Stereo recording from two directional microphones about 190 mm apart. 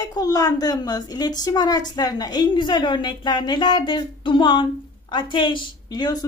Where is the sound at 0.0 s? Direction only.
20° left (ahead or behind).